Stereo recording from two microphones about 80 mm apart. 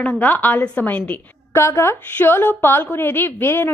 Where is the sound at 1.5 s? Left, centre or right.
Left.